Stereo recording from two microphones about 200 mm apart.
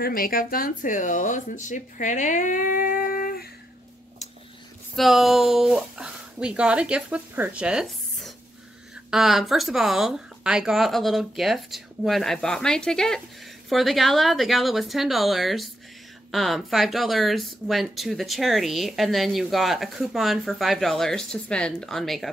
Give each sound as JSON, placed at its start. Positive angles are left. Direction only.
{"t": 0.0, "sound": "speech", "side_deg": 45}
{"t": 4.9, "sound": "speech", "side_deg": 0}